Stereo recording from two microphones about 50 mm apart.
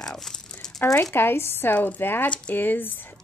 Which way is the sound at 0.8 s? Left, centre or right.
Left.